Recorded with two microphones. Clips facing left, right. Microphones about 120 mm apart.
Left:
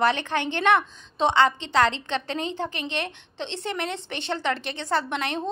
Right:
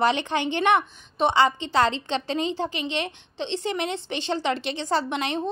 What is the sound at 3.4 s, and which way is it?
Speech, 70° left (ahead or behind).